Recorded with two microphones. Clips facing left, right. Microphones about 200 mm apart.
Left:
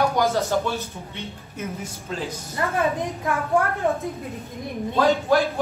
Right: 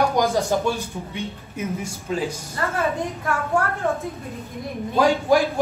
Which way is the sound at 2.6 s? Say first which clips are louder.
Even; 15° left (ahead or behind).